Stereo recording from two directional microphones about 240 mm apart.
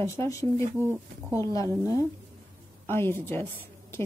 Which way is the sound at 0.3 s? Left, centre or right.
Centre.